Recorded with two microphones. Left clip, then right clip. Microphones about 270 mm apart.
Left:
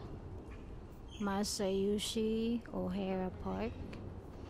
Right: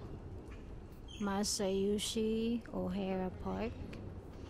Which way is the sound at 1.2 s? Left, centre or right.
Centre.